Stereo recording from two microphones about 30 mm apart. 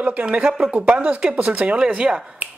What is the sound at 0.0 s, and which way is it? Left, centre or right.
Speech, right.